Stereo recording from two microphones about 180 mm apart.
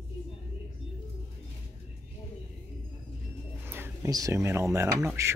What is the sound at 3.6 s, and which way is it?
Speech, 10° right (ahead or behind).